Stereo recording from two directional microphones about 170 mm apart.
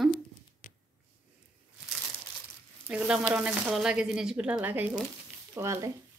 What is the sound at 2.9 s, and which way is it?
A woman's voice, 5° right (ahead or behind).